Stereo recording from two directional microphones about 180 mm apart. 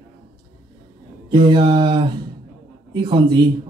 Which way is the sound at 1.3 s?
25° right (ahead or behind).